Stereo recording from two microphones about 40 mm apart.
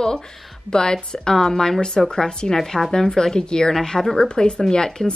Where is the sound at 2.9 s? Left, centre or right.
Centre.